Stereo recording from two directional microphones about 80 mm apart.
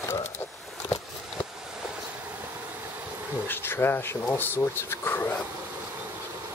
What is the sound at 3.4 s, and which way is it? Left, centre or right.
Speech, left.